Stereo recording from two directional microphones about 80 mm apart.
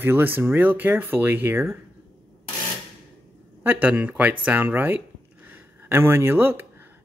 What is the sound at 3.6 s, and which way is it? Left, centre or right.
Speech, right.